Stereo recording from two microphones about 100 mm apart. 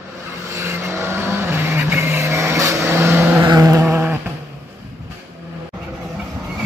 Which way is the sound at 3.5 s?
30° right (ahead or behind).